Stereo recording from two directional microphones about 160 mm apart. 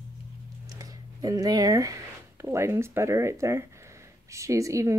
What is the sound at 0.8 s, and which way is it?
Speech, 20° right (ahead or behind).